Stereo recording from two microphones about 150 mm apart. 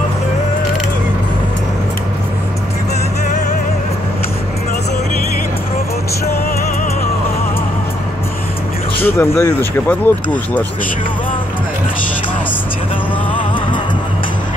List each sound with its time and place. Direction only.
9.0 s speech: 15° left (ahead or behind)